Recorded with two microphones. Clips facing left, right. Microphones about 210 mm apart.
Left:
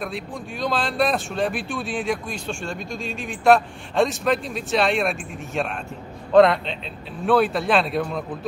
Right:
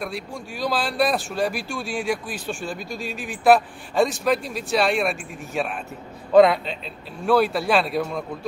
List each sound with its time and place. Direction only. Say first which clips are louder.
0.0 s speech: left 1 dB; centre (ahead or behind)